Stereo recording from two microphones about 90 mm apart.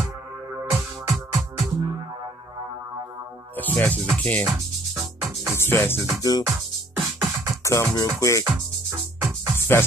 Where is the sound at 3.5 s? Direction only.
20° left (ahead or behind).